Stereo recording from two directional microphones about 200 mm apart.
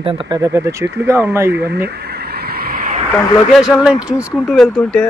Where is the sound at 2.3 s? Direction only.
50° right (ahead or behind).